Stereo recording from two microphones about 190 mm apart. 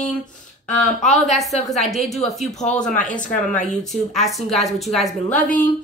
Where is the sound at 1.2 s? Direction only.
Centre (ahead or behind).